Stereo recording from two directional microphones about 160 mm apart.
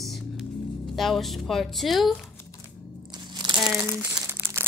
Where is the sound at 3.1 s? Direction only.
30° right (ahead or behind).